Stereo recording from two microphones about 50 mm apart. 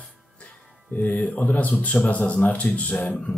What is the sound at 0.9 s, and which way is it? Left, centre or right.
Speech, left.